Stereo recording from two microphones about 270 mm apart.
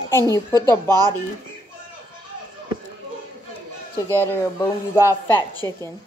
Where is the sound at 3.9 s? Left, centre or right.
Centre.